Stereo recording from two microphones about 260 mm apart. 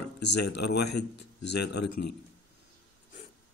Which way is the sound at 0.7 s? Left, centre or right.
Left.